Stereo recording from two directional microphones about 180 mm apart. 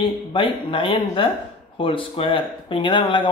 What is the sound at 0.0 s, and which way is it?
Speech, 30° left (ahead or behind).